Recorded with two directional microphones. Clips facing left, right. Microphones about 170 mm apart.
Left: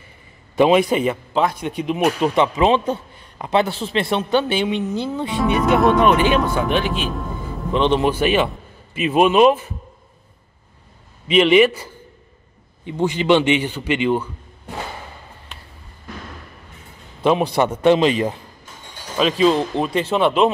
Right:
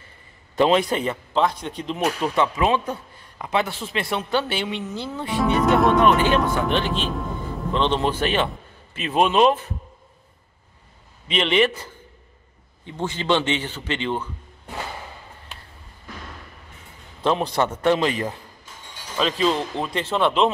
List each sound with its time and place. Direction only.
0.6 s a man's voice: 10° left (ahead or behind)
5.6 s speech: centre (ahead or behind)
6.0 s a man's voice: 15° left (ahead or behind)
7.7 s a man's voice: 15° left (ahead or behind)
11.2 s a man's voice: 5° left (ahead or behind)
17.2 s a man's voice: 10° left (ahead or behind)